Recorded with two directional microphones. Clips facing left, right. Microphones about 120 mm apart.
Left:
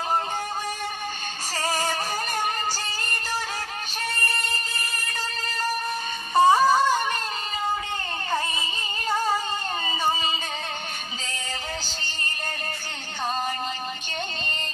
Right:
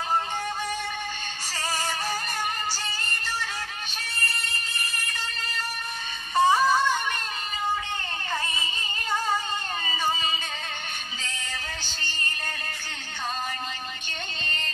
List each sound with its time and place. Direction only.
1.6 s music: 45° left (ahead or behind)
6.3 s music: 35° left (ahead or behind)